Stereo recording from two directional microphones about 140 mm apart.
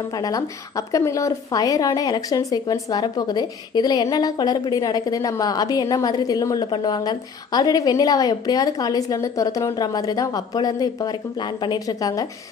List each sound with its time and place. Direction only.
0.1 s a woman's voice: 25° left (ahead or behind)